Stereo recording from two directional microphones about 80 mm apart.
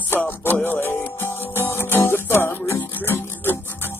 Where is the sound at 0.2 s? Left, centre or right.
Left.